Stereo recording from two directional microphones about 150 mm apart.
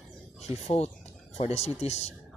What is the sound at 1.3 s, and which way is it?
Speech, 45° left (ahead or behind).